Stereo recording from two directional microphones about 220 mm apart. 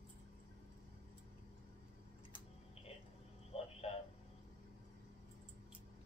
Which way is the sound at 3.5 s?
25° left (ahead or behind).